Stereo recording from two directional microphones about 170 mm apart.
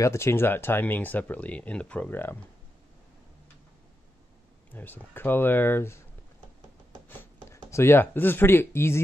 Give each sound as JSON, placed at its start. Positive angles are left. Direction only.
{"t": 0.0, "sound": "speech", "side_deg": 15}
{"t": 4.7, "sound": "speech", "side_deg": 10}
{"t": 7.1, "sound": "speech", "side_deg": 15}